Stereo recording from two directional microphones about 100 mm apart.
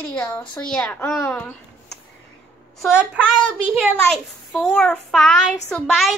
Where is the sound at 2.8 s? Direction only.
10° right (ahead or behind).